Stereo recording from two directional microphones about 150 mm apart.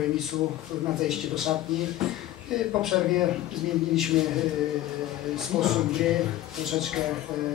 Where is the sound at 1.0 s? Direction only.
5° right (ahead or behind).